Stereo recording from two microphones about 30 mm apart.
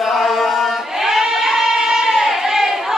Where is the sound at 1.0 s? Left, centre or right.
Centre.